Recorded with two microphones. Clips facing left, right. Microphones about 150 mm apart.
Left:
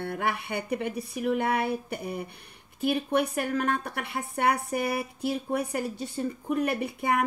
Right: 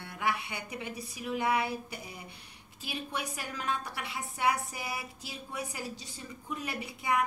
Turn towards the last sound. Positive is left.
turn(degrees=55)  # may be behind; listen again after turning